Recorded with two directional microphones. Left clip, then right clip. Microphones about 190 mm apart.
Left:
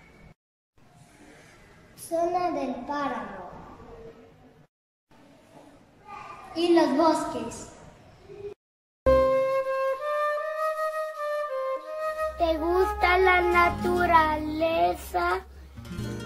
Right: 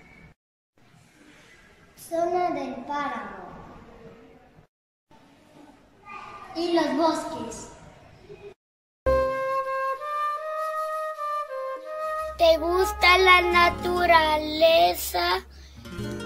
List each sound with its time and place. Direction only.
2.5 s a woman's voice: centre (ahead or behind)
6.7 s a child's voice: 30° left (ahead or behind)
9.0 s music: centre (ahead or behind)